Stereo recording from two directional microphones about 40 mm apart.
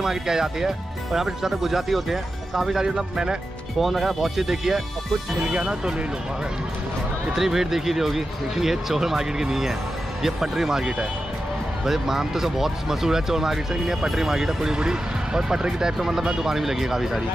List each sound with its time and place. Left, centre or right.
0.0 s speech: centre
3.8 s speech: centre
7.3 s speech: centre